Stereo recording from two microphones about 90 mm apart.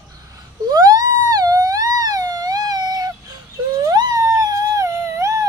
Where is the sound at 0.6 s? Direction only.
45° right (ahead or behind).